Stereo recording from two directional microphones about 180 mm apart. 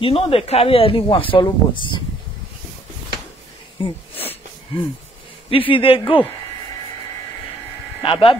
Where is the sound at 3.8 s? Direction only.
30° left (ahead or behind).